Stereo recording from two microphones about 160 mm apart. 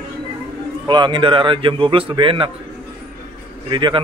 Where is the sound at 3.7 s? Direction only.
30° right (ahead or behind).